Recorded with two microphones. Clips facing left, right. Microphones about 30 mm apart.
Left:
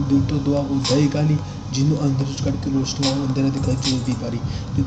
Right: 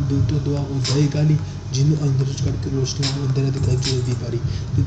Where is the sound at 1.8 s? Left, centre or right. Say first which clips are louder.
Left 1 dB; left.